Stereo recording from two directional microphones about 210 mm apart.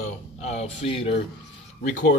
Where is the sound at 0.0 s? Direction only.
30° left (ahead or behind).